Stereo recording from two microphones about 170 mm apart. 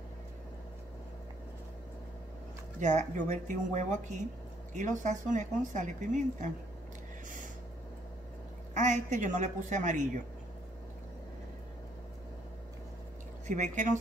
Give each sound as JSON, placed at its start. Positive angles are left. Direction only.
{"t": 2.8, "sound": "speech", "side_deg": -45}
{"t": 8.7, "sound": "speech", "side_deg": -45}
{"t": 13.5, "sound": "speech", "side_deg": -45}